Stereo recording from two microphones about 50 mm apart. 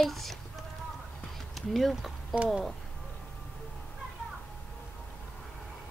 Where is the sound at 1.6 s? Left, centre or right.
Centre.